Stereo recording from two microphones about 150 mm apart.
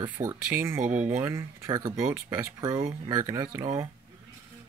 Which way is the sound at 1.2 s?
20° right (ahead or behind).